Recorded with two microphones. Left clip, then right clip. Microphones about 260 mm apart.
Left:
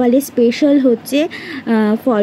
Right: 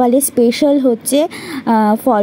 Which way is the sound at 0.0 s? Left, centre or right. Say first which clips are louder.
Right 1 dB; centre.